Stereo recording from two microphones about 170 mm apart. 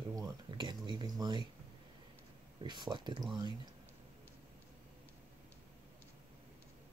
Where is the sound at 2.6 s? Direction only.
25° right (ahead or behind).